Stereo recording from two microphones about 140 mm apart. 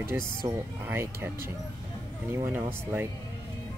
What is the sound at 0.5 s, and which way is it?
Speech, 15° right (ahead or behind).